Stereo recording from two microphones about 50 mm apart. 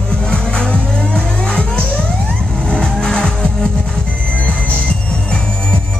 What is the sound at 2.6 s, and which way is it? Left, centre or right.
Vehicle, centre.